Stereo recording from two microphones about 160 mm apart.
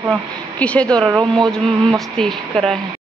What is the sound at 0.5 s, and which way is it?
A woman's voice, 10° left (ahead or behind).